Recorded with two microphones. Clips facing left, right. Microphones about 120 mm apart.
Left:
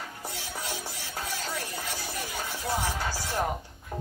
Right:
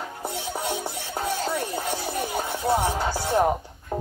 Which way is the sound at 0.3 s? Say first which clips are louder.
Right 9 dB; 25° right (ahead or behind).